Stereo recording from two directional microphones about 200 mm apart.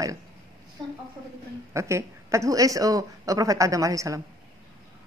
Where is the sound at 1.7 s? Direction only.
15° right (ahead or behind).